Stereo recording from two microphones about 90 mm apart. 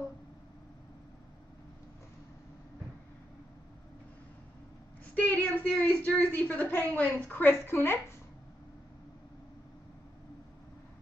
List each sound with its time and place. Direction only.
5.1 s a woman's voice: 20° left (ahead or behind)